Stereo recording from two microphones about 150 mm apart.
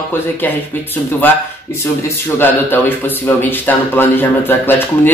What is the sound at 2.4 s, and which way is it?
Speech, 15° left (ahead or behind).